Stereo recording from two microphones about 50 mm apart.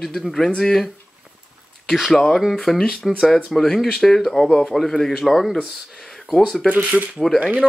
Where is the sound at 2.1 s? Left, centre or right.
Centre.